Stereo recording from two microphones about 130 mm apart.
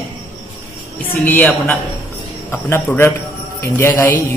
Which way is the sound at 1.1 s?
15° left (ahead or behind).